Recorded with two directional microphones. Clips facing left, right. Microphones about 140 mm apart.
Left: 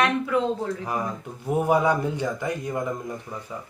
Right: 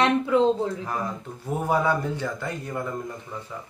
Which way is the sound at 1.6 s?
15° left (ahead or behind).